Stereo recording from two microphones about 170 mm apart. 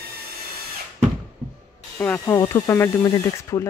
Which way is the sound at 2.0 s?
10° left (ahead or behind).